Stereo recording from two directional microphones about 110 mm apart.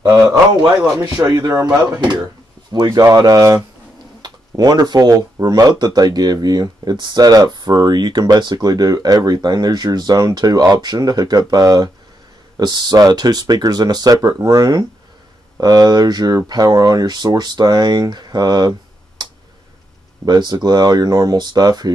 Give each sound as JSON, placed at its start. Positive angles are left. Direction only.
{"t": 0.0, "sound": "speech", "side_deg": -35}
{"t": 20.2, "sound": "speech", "side_deg": -40}